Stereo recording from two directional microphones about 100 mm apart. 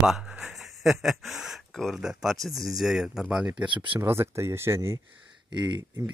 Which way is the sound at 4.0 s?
25° right (ahead or behind).